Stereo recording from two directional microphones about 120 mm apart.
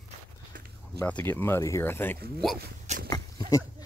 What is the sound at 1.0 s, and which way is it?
Speech, 15° left (ahead or behind).